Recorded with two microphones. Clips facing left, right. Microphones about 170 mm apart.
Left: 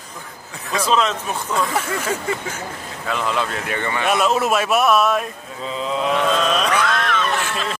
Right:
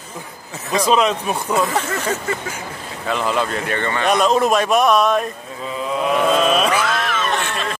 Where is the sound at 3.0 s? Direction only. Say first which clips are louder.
Right 2 dB; centre (ahead or behind).